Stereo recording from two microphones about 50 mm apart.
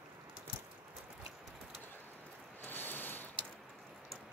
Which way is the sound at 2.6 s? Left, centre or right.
Left.